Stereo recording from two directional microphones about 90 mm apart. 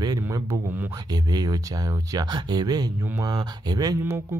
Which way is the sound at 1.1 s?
45° right (ahead or behind).